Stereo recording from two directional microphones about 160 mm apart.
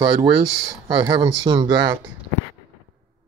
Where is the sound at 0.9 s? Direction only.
30° right (ahead or behind).